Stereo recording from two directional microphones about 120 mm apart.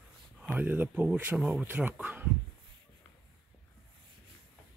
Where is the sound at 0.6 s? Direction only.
15° right (ahead or behind).